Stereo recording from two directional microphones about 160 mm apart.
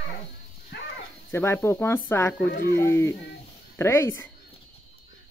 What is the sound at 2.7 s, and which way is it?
Speech, 15° left (ahead or behind).